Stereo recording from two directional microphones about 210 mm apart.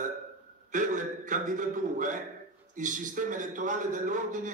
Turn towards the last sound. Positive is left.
turn(degrees=-40)  # may be behind; listen again after turning